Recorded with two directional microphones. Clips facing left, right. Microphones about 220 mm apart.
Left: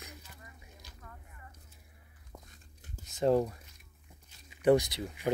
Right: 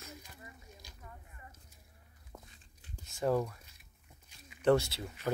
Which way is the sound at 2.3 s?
5° right (ahead or behind).